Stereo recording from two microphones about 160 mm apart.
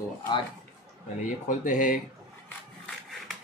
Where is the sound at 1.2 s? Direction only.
55° left (ahead or behind).